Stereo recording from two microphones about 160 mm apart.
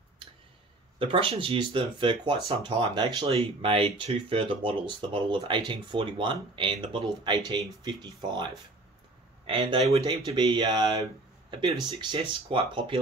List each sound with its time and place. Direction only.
0.9 s speech: 35° right (ahead or behind)
9.5 s speech: 30° right (ahead or behind)